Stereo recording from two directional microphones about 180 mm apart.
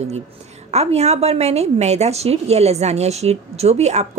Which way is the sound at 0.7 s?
35° right (ahead or behind).